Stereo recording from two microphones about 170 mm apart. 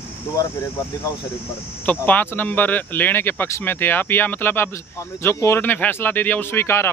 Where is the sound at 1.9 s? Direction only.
10° left (ahead or behind).